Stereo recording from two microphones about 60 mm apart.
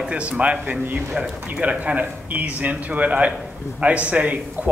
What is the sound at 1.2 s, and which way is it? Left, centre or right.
Speech, centre.